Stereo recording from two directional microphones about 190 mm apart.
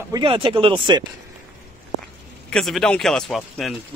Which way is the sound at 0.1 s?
25° right (ahead or behind).